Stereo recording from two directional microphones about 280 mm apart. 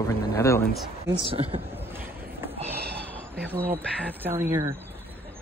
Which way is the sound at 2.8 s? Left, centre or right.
Right.